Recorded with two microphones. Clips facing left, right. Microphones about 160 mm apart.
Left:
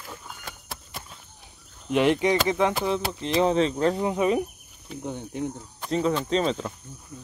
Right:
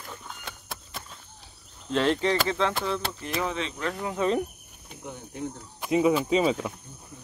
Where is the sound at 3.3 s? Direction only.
35° left (ahead or behind).